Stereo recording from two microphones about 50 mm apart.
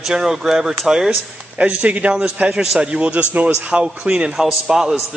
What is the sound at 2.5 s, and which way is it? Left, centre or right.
A man's voice, centre.